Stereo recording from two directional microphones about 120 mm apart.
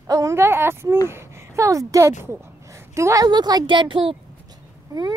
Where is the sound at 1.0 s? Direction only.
20° right (ahead or behind).